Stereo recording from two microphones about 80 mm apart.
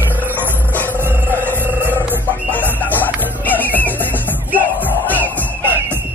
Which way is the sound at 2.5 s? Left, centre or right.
Left.